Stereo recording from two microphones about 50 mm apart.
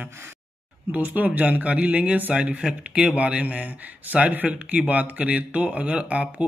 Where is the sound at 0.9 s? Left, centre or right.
Right.